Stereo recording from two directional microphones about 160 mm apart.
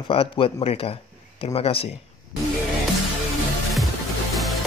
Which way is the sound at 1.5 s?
40° left (ahead or behind).